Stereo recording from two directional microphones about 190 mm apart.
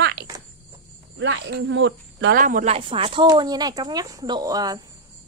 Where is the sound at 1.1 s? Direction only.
70° right (ahead or behind).